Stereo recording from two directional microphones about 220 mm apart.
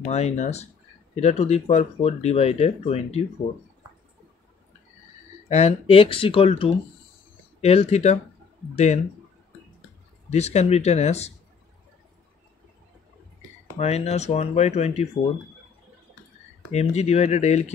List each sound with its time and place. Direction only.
0.1 s speech: 30° left (ahead or behind)
5.5 s speech: 30° left (ahead or behind)
10.3 s speech: 30° left (ahead or behind)
13.7 s speech: 30° left (ahead or behind)
16.7 s speech: 30° left (ahead or behind)